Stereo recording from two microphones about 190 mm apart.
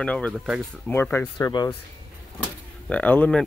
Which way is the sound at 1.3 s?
20° left (ahead or behind).